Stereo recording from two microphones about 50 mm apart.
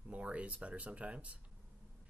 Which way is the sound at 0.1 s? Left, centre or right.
Right.